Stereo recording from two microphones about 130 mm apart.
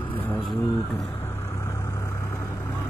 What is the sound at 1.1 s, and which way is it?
Vehicle, 20° left (ahead or behind).